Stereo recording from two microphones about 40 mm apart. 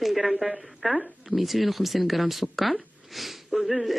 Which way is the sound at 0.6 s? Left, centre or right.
Centre.